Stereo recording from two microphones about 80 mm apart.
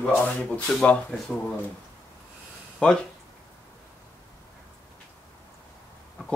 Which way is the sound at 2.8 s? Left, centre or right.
Centre.